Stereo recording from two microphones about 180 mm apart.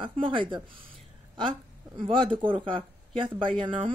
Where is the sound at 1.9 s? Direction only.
30° right (ahead or behind).